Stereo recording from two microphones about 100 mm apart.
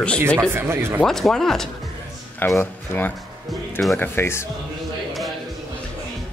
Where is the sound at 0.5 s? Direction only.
25° right (ahead or behind).